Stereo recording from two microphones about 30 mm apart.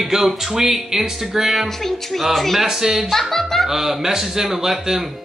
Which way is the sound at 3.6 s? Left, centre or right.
Centre.